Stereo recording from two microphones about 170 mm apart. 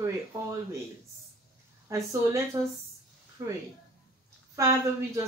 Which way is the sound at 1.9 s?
15° right (ahead or behind).